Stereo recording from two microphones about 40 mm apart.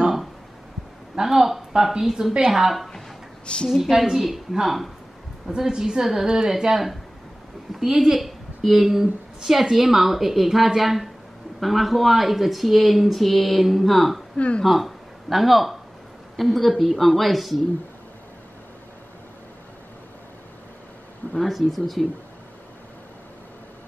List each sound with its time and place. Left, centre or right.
1.1 s a sound: centre
1.8 s a woman's voice: centre
5.6 s a woman's voice: centre
14.3 s speech: left
14.6 s speech: centre
21.4 s speech: centre